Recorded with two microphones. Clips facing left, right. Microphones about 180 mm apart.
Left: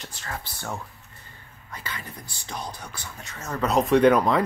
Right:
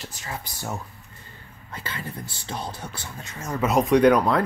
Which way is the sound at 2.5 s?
25° right (ahead or behind).